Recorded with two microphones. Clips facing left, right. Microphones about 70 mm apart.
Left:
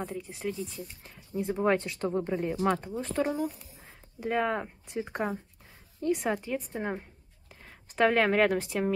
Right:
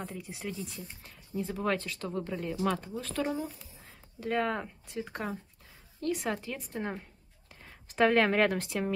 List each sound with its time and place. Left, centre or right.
0.4 s speech: centre
1.3 s speech: left
2.5 s speech: left
2.8 s speech: left
3.3 s a woman's voice: centre